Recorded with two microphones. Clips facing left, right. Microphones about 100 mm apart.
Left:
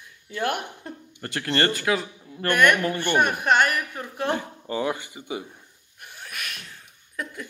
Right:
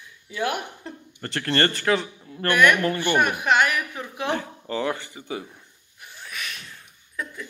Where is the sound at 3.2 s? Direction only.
45° left (ahead or behind).